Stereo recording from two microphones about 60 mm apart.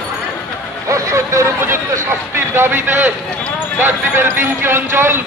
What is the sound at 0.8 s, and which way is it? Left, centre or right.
A man's voice, right.